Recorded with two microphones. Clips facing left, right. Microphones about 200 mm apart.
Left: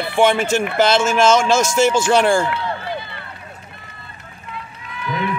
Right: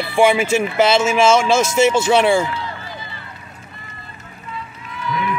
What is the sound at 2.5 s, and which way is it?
Run, 65° left (ahead or behind).